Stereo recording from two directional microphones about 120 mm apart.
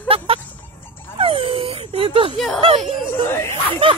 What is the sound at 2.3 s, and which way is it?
Speech, centre (ahead or behind).